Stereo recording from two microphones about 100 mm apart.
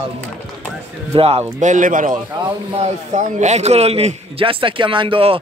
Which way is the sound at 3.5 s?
90° right.